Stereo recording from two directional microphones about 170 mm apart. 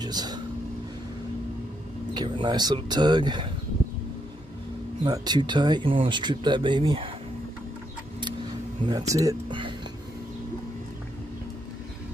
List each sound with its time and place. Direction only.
0.0 s vehicle: 25° right (ahead or behind)
2.1 s speech: 30° right (ahead or behind)
5.0 s speech: 25° right (ahead or behind)
8.8 s speech: 20° right (ahead or behind)